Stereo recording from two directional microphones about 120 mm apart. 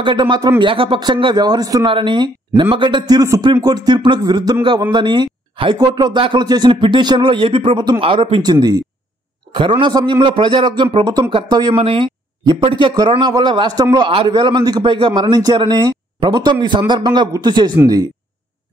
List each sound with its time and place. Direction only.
0.0 s a man's voice: 40° right (ahead or behind)
1.9 s a man's voice: 45° right (ahead or behind)